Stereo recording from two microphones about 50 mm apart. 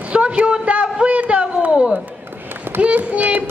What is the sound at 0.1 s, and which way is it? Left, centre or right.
Speech, right.